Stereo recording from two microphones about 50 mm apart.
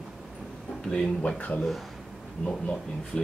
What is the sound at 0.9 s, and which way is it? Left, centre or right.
Speech, left.